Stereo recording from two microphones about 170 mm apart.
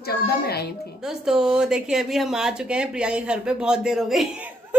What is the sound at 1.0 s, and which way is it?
A woman's voice, 5° right (ahead or behind).